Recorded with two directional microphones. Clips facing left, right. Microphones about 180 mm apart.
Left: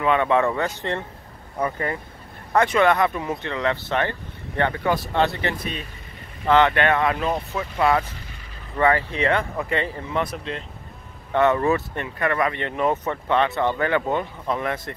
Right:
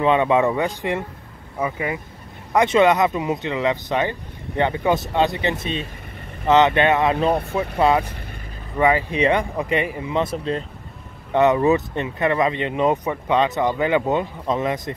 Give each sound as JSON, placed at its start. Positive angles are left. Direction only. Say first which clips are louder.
{"t": 0.0, "sound": "speech", "louder": "right 3 dB", "side_deg": -20}
{"t": 2.5, "sound": "speech", "louder": "right 3 dB", "side_deg": -20}
{"t": 10.2, "sound": "speech", "louder": "right 6 dB", "side_deg": -35}
{"t": 11.3, "sound": "speech", "louder": "right 3 dB", "side_deg": -15}